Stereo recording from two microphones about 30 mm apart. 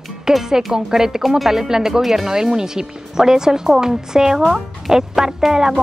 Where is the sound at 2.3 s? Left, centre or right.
Centre.